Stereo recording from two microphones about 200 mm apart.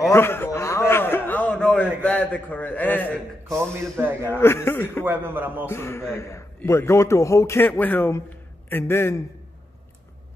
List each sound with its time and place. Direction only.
0.1 s a sound: 10° left (ahead or behind)
3.4 s a man's voice: 15° right (ahead or behind)
4.3 s a man's voice: 10° left (ahead or behind)
5.0 s a man's voice: 10° right (ahead or behind)
5.7 s a man's voice: 10° left (ahead or behind)